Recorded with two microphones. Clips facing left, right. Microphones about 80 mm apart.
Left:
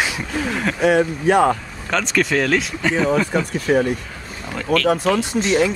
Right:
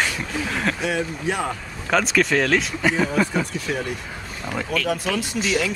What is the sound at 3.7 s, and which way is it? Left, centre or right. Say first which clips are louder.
Speech: left 12 dB; left.